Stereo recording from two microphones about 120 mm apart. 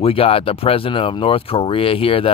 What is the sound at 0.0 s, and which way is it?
Speech, 50° left (ahead or behind).